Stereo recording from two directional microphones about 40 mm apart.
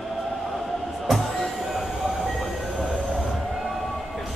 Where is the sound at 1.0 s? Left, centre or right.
Centre.